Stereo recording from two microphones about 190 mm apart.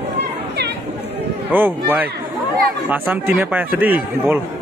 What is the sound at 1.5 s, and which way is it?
A man's voice, 10° right (ahead or behind).